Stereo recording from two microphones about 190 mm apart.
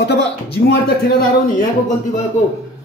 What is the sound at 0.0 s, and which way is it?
Speech, 65° left (ahead or behind).